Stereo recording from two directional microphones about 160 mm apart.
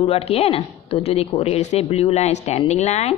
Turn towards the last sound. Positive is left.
turn(degrees=45)  # may be behind; listen again after turning